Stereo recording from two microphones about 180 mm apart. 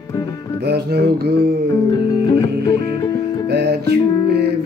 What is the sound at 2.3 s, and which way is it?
Music, 20° left (ahead or behind).